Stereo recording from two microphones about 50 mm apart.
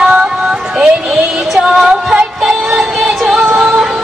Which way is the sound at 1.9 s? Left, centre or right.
Right.